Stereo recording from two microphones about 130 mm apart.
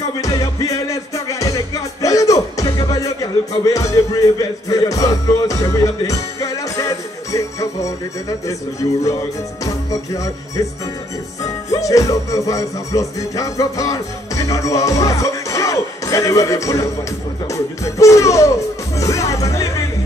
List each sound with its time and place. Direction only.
0.2 s music: 25° left (ahead or behind)
9.8 s speech: 25° left (ahead or behind)
11.4 s music: 25° left (ahead or behind)
17.5 s speech: 25° left (ahead or behind)